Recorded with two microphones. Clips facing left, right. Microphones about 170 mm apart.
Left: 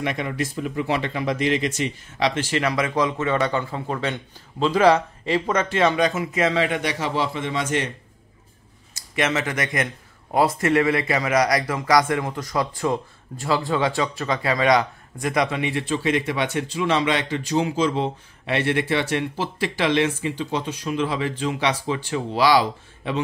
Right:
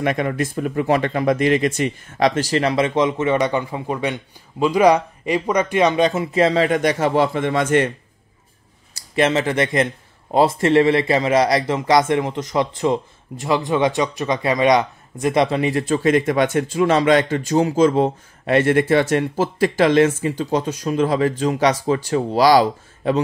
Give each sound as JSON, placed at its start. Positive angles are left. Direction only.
{"t": 0.0, "sound": "speech", "side_deg": -50}
{"t": 8.9, "sound": "speech", "side_deg": -30}